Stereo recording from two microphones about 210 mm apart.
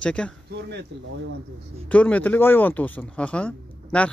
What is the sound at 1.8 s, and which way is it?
Speech, 5° left (ahead or behind).